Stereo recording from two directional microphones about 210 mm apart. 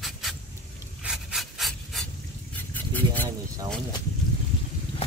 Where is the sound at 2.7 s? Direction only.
10° left (ahead or behind).